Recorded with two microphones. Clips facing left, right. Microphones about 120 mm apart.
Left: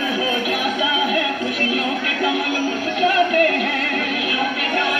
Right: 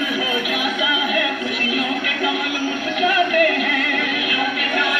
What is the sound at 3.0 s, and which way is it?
Music, 30° left (ahead or behind).